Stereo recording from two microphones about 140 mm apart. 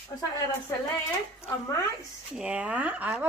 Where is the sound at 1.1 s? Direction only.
20° left (ahead or behind).